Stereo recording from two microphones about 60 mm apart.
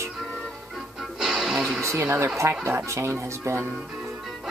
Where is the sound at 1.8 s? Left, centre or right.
Right.